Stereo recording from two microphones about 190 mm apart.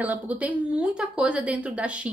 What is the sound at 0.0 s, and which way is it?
A woman's voice, 10° right (ahead or behind).